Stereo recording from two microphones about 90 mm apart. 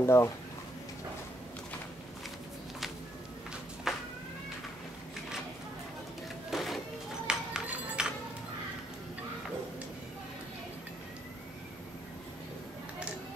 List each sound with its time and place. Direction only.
0.0 s speech: 30° left (ahead or behind)
3.9 s cat: 5° right (ahead or behind)
6.5 s printer: centre (ahead or behind)
7.2 s music: 10° right (ahead or behind)